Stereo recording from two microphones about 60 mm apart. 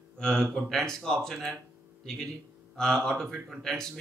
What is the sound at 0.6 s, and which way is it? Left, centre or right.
Speech, centre.